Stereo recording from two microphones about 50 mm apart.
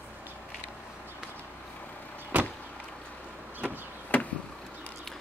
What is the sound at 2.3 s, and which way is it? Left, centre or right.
Vehicle, right.